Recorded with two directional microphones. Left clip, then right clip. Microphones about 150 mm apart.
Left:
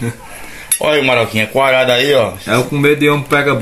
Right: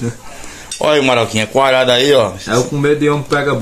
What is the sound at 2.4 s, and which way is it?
Speech, 75° left (ahead or behind).